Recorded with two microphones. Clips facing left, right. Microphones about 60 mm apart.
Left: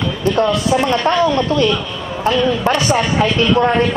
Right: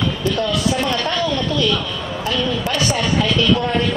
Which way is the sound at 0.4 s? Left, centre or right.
Left.